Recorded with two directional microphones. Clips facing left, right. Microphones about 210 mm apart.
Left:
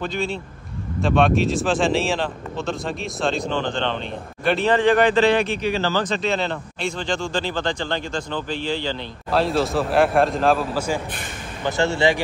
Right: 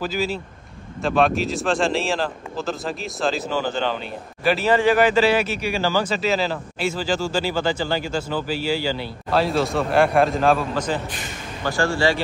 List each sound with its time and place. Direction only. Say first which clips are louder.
0.0 s a man's voice: right 1 dB; 5° right (ahead or behind)
11.6 s speech: left 1 dB; 20° left (ahead or behind)